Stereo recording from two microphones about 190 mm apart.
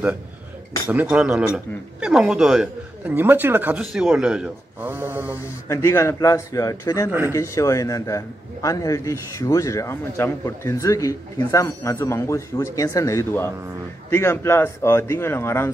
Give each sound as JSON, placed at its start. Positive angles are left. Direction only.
{"t": 0.8, "sound": "speech", "side_deg": -5}
{"t": 5.4, "sound": "a man's voice", "side_deg": 15}
{"t": 7.1, "sound": "speech", "side_deg": -10}
{"t": 7.3, "sound": "a man's voice", "side_deg": 15}